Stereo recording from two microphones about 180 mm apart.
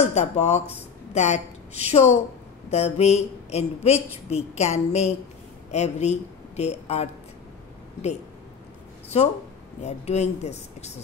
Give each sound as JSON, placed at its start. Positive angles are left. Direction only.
{"t": 0.0, "sound": "a woman's voice", "side_deg": 40}
{"t": 9.1, "sound": "a woman's voice", "side_deg": 35}